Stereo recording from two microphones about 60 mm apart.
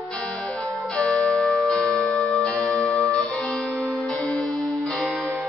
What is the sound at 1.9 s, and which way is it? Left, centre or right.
Music, centre.